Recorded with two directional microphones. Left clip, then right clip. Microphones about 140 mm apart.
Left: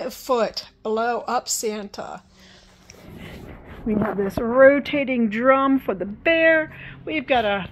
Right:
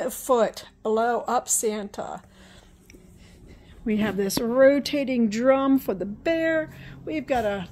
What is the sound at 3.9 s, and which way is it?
Speech, 15° right (ahead or behind).